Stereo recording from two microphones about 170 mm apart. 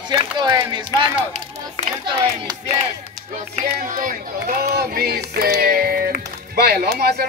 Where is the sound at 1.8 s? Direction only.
30° left (ahead or behind).